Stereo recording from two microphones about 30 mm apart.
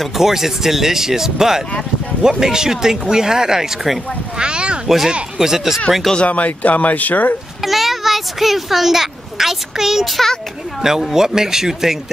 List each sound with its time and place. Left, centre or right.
0.1 s speech: centre
4.4 s a sound: right
4.8 s speech: centre
6.1 s speech: left
7.6 s a child's voice: centre